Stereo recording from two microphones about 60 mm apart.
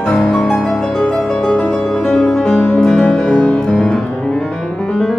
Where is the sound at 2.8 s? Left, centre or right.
Centre.